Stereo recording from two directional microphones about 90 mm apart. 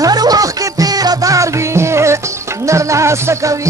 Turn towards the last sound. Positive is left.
turn(degrees=-35)  # may be behind; listen again after turning